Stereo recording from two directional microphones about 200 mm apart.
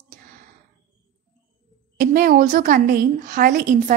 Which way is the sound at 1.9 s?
45° right (ahead or behind).